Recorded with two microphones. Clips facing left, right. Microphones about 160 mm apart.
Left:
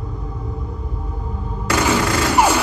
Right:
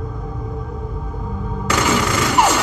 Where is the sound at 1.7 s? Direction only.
10° left (ahead or behind).